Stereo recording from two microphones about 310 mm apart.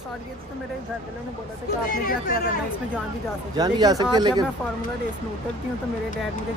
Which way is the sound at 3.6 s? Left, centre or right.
Centre.